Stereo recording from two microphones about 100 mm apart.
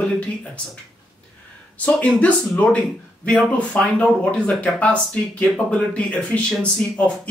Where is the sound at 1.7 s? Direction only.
15° left (ahead or behind).